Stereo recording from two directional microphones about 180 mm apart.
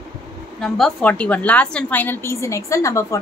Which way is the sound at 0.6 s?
Centre (ahead or behind).